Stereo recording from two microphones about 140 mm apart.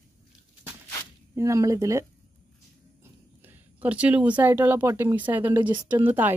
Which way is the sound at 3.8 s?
10° right (ahead or behind).